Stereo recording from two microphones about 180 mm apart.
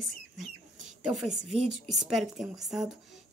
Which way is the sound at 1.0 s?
Centre (ahead or behind).